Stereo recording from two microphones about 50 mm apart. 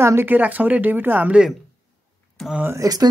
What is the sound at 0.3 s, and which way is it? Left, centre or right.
Speech, right.